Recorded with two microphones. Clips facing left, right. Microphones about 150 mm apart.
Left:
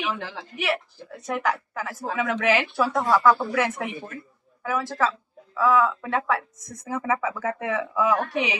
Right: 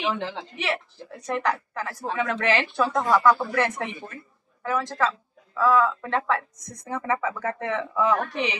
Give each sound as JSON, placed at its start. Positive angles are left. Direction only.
{"t": 0.0, "sound": "a woman's voice", "side_deg": -25}
{"t": 0.6, "sound": "a woman's voice", "side_deg": 0}